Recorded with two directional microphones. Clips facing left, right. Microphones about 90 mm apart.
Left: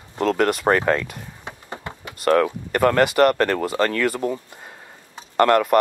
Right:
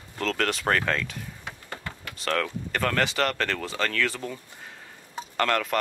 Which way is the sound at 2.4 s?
15° left (ahead or behind).